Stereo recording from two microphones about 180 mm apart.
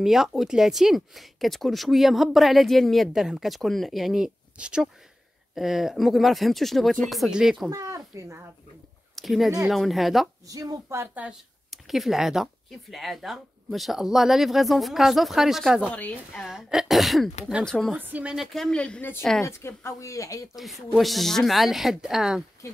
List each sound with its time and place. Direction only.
0.0 s speech: centre (ahead or behind)
7.7 s speech: 20° right (ahead or behind)
9.1 s speech: centre (ahead or behind)
10.5 s speech: 20° right (ahead or behind); by 15.9 s 5° right (ahead or behind)
15.9 s speech: 10° left (ahead or behind)
16.4 s speech: centre (ahead or behind); by 20.4 s 15° left (ahead or behind)
20.5 s speech: centre (ahead or behind)